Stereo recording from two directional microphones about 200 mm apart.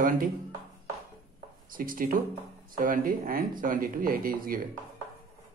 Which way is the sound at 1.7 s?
45° right (ahead or behind).